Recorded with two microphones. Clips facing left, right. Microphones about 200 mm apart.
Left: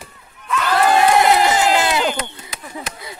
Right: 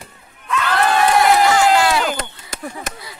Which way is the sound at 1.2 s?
20° left (ahead or behind).